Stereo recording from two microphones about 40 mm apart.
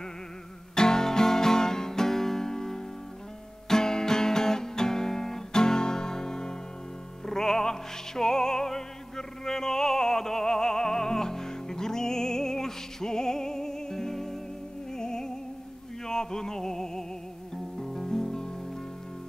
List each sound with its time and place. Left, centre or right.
0.7 s music: centre
3.6 s guitar: centre
7.2 s music: centre